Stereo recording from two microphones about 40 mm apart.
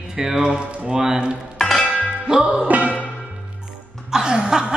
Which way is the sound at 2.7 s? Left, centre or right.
Right.